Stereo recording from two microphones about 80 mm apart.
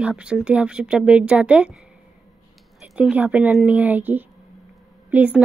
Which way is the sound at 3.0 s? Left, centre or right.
Centre.